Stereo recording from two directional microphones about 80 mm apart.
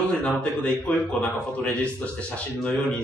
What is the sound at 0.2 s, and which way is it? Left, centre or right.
A man's voice, centre.